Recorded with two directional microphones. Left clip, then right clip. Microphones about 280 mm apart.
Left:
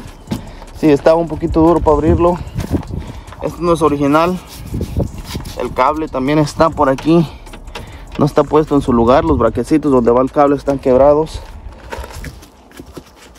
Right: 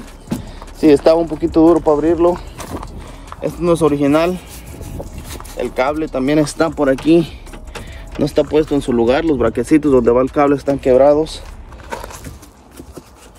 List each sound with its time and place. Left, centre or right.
0.3 s speech: left
3.3 s speech: centre
5.6 s speech: centre
10.7 s speech: centre